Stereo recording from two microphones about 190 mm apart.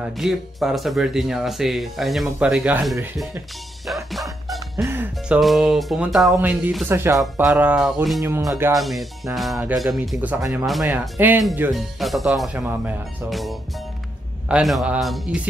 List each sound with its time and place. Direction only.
0.0 s speech: centre (ahead or behind)
3.8 s music: centre (ahead or behind)
4.8 s speech: 10° right (ahead or behind)
8.2 s speech: 20° right (ahead or behind)
8.7 s speech: centre (ahead or behind)